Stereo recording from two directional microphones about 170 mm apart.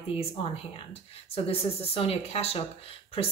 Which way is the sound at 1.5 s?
35° left (ahead or behind).